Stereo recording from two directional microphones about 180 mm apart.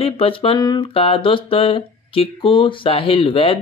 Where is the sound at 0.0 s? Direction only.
30° left (ahead or behind).